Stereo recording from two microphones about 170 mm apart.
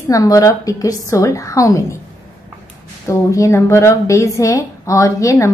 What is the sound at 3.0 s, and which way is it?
A woman's voice, 15° left (ahead or behind).